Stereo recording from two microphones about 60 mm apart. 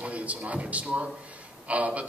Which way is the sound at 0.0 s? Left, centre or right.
Right.